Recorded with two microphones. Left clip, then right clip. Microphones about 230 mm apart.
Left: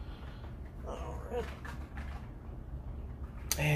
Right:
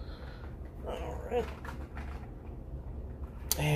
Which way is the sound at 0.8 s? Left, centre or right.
Right.